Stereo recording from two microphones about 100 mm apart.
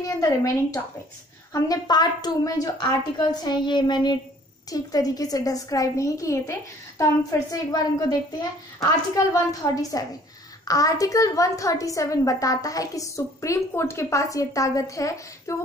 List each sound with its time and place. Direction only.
0.0 s a woman's voice: 30° left (ahead or behind)
1.5 s a woman's voice: 40° left (ahead or behind)